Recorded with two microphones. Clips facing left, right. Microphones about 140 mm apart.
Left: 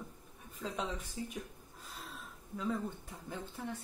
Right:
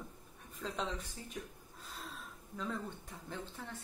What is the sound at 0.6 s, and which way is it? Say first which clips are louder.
Speech: left 1 dB; 5° left (ahead or behind).